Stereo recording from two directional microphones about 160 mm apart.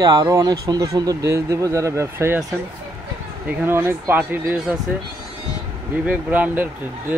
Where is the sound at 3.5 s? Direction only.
10° right (ahead or behind).